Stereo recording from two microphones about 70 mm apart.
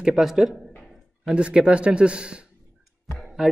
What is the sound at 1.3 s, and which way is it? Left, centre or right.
Speech, centre.